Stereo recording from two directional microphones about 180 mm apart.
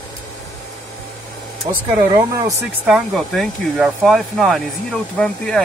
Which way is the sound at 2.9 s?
Centre (ahead or behind).